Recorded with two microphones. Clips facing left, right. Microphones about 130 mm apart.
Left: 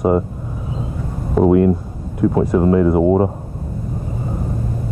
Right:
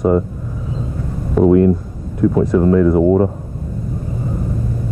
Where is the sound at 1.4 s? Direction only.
10° left (ahead or behind).